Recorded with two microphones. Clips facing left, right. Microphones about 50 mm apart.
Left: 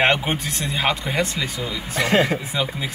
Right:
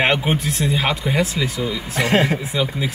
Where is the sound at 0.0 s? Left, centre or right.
Centre.